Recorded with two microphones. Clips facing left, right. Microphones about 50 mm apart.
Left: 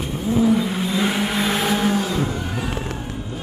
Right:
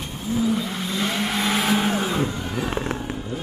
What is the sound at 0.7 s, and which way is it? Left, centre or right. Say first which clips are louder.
Vehicle: left 4 dB; centre.